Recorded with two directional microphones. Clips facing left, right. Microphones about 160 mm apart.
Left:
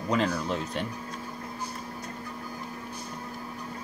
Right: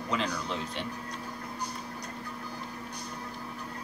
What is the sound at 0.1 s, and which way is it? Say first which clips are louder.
Speech: left 5 dB; 45° left (ahead or behind).